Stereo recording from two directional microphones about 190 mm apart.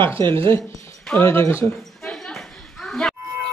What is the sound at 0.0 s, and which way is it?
Speech, 10° left (ahead or behind).